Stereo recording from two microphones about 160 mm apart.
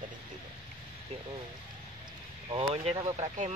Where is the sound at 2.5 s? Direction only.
35° right (ahead or behind).